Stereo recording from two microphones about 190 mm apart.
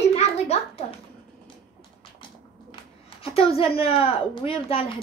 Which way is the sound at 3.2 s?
30° left (ahead or behind).